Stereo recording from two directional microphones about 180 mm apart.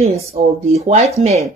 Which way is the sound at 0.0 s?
35° right (ahead or behind).